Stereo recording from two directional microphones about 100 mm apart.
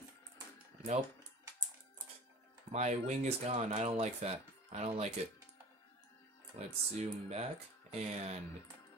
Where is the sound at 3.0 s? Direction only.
90° right.